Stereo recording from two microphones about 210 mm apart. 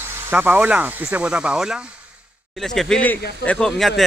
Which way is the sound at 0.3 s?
10° right (ahead or behind).